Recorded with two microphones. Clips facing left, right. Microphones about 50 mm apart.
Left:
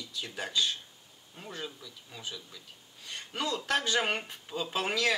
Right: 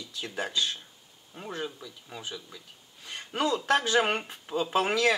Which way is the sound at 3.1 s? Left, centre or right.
Centre.